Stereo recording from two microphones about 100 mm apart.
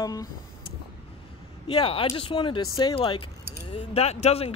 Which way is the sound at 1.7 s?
65° left (ahead or behind).